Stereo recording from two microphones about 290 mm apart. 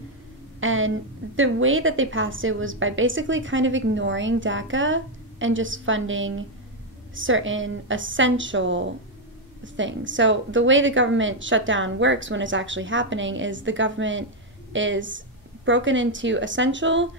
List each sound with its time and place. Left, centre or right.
0.6 s a woman's voice: right